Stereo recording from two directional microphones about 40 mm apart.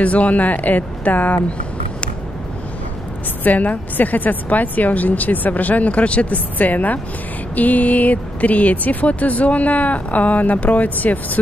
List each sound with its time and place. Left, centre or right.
0.0 s a woman's voice: left
3.4 s a woman's voice: left
6.3 s a woman's voice: left